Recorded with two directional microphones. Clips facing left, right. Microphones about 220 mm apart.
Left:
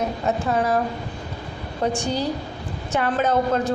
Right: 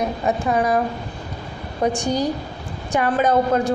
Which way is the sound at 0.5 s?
10° right (ahead or behind).